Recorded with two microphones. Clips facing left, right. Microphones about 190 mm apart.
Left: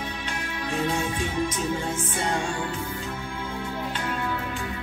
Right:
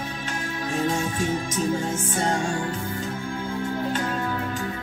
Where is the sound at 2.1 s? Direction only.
45° right (ahead or behind).